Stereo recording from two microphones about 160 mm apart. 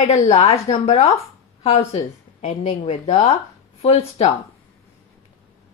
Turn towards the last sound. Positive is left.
turn(degrees=40)  # may be behind; listen again after turning